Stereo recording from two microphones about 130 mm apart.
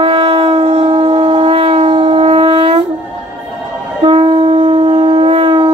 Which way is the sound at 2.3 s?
35° right (ahead or behind).